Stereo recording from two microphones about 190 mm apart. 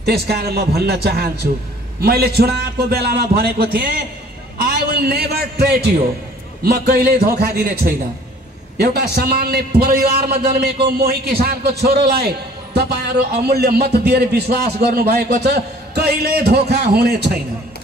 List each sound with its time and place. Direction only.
0.0 s a man's voice: 55° right (ahead or behind)
13.3 s a man's voice: 55° right (ahead or behind)